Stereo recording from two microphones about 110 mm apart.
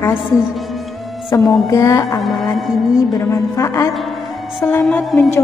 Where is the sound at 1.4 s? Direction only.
35° left (ahead or behind).